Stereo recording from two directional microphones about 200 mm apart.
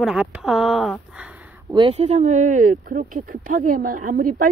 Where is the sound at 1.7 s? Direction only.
25° right (ahead or behind); by 4.5 s 40° right (ahead or behind).